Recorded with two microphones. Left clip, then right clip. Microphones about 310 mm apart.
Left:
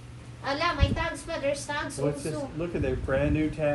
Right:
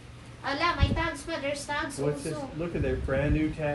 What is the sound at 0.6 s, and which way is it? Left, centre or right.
A woman's voice, centre.